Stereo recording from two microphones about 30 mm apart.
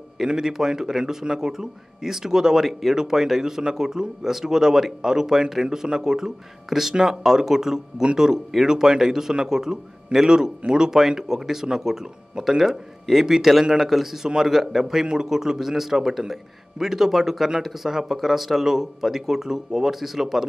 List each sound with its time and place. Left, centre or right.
0.4 s speech: centre
2.6 s speech: centre
3.0 s speech: centre